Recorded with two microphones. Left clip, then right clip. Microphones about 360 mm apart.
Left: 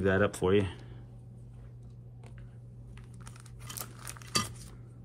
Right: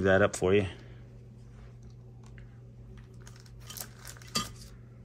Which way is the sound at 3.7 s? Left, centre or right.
Left.